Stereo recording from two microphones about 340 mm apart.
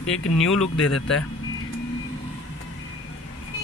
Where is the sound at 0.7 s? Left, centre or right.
Left.